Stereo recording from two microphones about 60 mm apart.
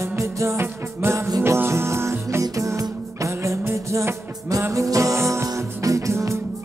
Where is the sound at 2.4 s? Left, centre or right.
Right.